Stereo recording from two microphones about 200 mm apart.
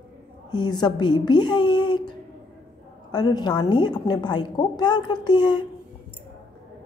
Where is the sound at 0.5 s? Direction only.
20° left (ahead or behind).